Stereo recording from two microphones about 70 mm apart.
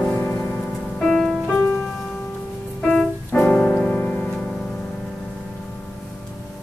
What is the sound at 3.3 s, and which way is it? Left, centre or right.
Music, left.